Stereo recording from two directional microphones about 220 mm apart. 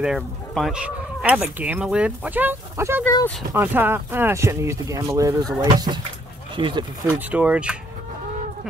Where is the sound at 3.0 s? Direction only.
10° left (ahead or behind).